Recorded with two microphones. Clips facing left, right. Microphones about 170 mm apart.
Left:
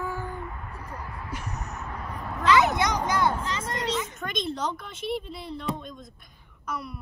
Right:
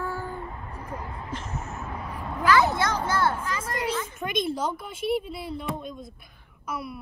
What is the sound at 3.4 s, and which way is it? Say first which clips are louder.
Speech: even; 25° left (ahead or behind).